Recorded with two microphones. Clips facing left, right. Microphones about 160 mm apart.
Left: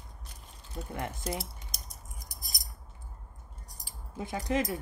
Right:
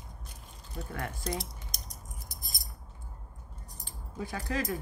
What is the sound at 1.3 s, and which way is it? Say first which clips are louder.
Keys jangling: even; 5° left (ahead or behind).